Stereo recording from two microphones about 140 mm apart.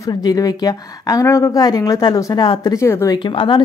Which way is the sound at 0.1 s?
30° left (ahead or behind).